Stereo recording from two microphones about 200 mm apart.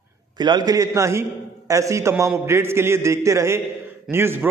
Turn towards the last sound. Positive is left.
turn(degrees=-10)  # may be behind; listen again after turning